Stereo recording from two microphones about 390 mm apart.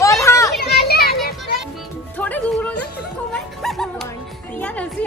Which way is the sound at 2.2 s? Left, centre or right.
Centre.